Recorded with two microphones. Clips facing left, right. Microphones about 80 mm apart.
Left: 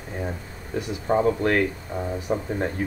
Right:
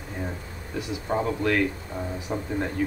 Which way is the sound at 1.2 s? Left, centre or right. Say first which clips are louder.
Left 3 dB; left.